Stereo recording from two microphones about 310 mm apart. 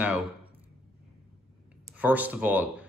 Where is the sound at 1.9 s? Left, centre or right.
Centre.